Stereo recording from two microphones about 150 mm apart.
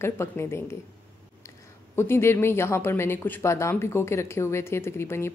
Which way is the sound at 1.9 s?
15° left (ahead or behind).